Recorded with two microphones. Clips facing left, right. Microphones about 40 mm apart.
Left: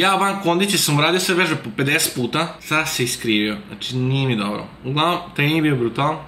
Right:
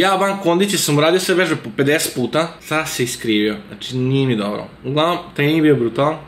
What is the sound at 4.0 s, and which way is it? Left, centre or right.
Speech, centre.